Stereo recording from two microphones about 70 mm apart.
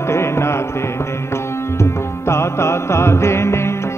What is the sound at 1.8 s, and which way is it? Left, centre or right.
Music, left.